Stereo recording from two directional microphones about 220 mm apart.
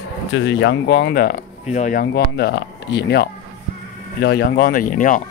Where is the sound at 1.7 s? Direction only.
35° left (ahead or behind).